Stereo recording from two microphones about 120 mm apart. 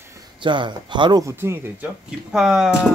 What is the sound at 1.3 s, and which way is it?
Speech, 20° right (ahead or behind).